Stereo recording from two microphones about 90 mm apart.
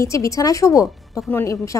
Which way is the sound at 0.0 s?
35° left (ahead or behind).